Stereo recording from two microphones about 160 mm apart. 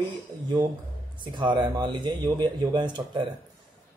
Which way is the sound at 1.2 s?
30° right (ahead or behind).